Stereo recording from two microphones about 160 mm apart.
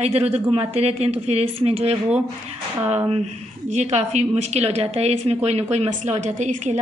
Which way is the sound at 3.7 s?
45° right (ahead or behind).